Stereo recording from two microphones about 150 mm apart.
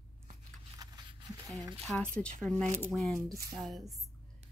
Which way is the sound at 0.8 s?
25° right (ahead or behind).